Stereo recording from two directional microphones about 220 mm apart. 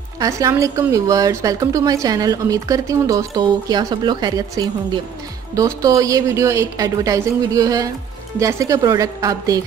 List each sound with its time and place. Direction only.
0.2 s a woman's voice: 15° right (ahead or behind)